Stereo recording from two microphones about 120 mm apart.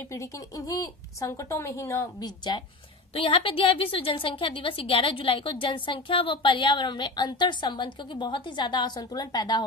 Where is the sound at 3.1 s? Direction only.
50° left (ahead or behind).